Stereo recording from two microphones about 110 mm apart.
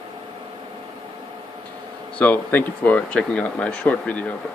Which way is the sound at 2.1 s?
15° left (ahead or behind).